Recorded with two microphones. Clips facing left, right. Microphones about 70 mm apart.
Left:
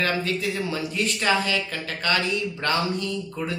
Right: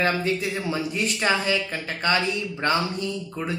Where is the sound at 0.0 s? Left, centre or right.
Right.